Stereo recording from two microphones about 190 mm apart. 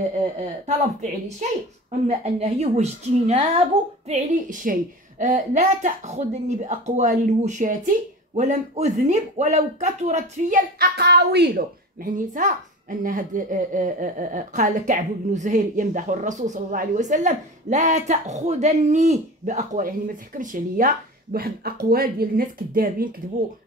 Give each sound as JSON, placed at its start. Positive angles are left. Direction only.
{"t": 1.4, "sound": "speech", "side_deg": -40}
{"t": 4.1, "sound": "a woman's voice", "side_deg": -45}
{"t": 10.8, "sound": "a woman's voice", "side_deg": -60}